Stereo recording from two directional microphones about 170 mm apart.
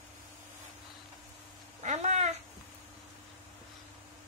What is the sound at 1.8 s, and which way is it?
Cat, 45° right (ahead or behind).